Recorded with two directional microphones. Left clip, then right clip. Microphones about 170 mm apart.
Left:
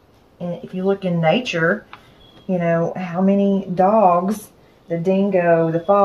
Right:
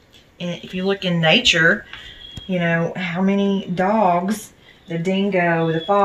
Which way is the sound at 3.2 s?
15° left (ahead or behind).